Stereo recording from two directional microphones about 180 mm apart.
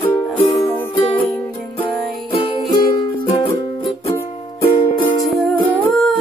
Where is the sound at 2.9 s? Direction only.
25° left (ahead or behind).